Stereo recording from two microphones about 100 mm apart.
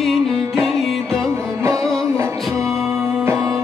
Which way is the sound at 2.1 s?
30° right (ahead or behind).